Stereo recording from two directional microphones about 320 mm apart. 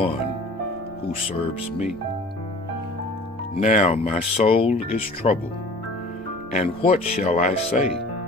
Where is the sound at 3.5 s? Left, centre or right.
Left.